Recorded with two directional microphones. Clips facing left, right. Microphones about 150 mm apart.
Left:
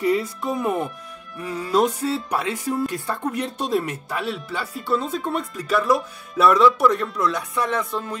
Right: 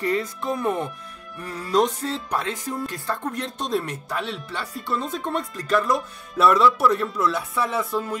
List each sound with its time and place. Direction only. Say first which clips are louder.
0.0 s speech: left 3 dB; 5° left (ahead or behind)